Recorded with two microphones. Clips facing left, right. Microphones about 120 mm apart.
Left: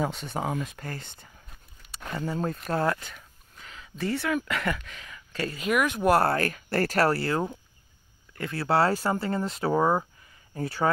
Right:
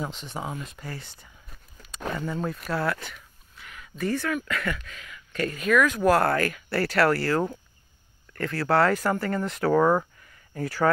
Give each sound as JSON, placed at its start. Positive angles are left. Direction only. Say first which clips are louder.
{"t": 0.1, "sound": "speech", "louder": "left 4 dB", "side_deg": 55}
{"t": 2.1, "sound": "speech", "louder": "left 3 dB", "side_deg": 35}
{"t": 3.5, "sound": "a sound", "louder": "right 1 dB", "side_deg": 30}
{"t": 4.0, "sound": "speech", "louder": "even", "side_deg": 20}
{"t": 7.1, "sound": "speech", "louder": "right 2 dB", "side_deg": 25}